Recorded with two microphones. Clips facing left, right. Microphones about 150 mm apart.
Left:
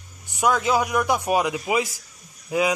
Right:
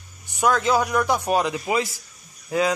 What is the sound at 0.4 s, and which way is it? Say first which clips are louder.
A man's voice: right 1 dB; 10° left (ahead or behind).